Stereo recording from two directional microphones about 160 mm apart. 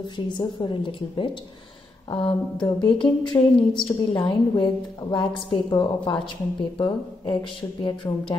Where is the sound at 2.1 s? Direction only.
30° left (ahead or behind).